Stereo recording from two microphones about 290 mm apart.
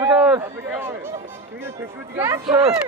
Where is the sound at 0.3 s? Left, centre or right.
Centre.